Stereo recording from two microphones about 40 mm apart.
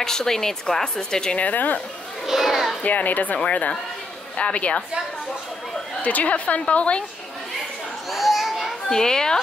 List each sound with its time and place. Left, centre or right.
0.0 s a woman's voice: centre
1.3 s speech: left
2.2 s a child's voice: centre
2.8 s a woman's voice: left
6.0 s a woman's voice: left
8.1 s children playing: centre
8.8 s a woman's voice: centre